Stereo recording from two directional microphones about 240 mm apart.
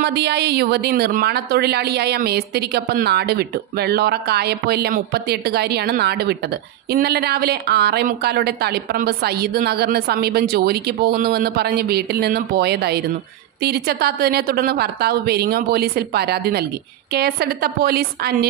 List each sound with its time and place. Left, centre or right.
0.0 s a woman's voice: right